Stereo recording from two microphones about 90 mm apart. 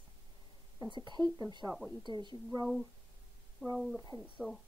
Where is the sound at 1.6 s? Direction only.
20° right (ahead or behind).